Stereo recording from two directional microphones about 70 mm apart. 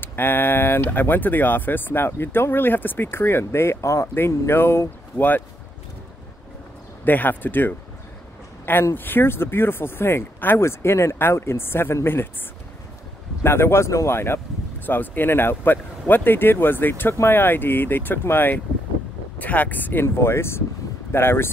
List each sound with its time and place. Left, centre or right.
0.0 s speech: left
7.1 s speech: left
8.9 s speech: left
13.4 s speech: left